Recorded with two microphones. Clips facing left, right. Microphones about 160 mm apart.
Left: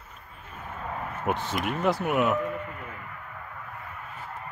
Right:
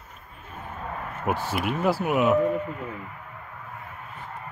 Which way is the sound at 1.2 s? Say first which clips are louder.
Right 2 dB; 5° right (ahead or behind).